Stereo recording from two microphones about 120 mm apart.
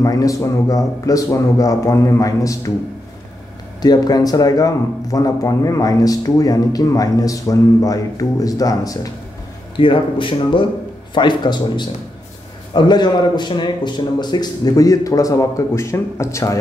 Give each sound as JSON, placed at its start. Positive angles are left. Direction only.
{"t": 0.0, "sound": "a man's voice", "side_deg": 30}
{"t": 3.8, "sound": "speech", "side_deg": 35}
{"t": 9.8, "sound": "speech", "side_deg": 45}